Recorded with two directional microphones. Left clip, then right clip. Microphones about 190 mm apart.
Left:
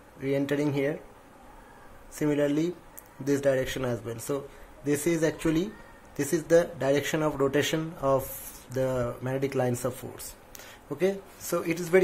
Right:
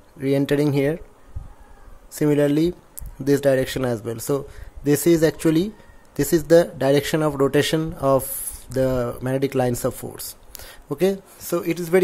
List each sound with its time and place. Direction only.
0.2 s speech: 40° right (ahead or behind)
2.1 s speech: 40° right (ahead or behind)